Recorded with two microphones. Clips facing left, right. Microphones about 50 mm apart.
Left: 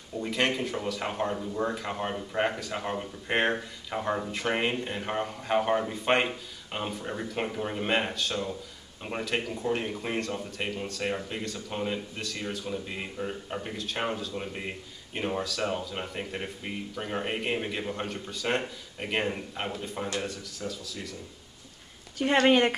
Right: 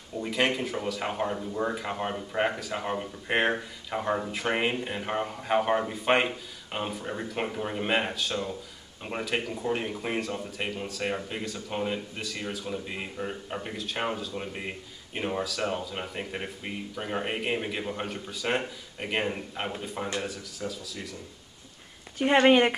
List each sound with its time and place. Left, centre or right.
0.2 s a man's voice: centre
22.2 s speech: right